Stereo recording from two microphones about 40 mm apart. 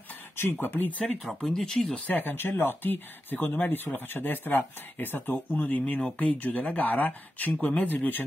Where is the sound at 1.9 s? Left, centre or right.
Left.